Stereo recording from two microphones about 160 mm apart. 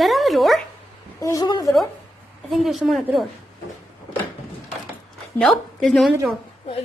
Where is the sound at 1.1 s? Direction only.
20° left (ahead or behind).